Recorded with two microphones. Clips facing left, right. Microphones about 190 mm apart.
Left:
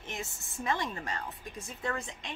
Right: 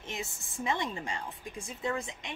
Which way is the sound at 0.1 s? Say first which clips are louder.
Right 1 dB; 15° right (ahead or behind).